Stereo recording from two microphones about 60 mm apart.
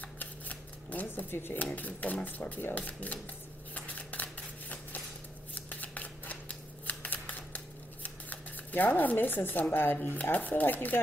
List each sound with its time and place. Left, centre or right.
0.0 s shuffling cards: left
1.3 s speech: left
1.6 s speech: left
3.7 s a sound: left
5.5 s shuffling cards: left
6.9 s a sound: left
10.2 s speech: left